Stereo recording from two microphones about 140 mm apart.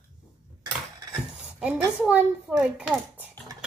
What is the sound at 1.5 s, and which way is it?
A child's voice, 10° right (ahead or behind).